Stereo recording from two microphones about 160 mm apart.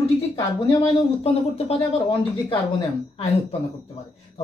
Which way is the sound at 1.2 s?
35° left (ahead or behind).